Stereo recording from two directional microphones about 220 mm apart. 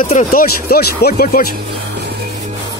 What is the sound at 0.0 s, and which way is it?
Speech, 35° left (ahead or behind).